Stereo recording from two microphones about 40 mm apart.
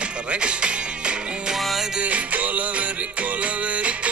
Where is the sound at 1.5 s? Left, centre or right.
Centre.